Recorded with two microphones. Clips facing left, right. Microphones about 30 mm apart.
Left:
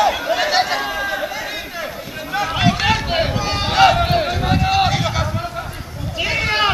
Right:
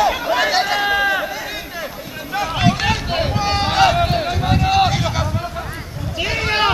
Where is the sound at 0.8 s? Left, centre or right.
Right.